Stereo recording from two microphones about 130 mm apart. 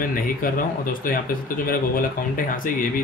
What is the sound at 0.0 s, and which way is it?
Speech, 90° left.